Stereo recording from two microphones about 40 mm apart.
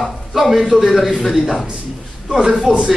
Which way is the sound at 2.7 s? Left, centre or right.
Centre.